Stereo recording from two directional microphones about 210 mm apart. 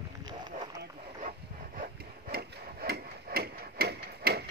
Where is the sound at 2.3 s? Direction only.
45° right (ahead or behind).